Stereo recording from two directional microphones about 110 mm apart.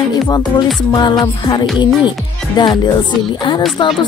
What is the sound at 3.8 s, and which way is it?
Speech, 50° left (ahead or behind).